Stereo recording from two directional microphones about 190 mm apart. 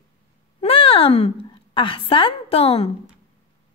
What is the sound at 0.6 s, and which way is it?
Speech, 30° left (ahead or behind).